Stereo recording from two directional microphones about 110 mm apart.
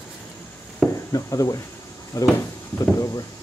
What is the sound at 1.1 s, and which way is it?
Speech, 30° left (ahead or behind).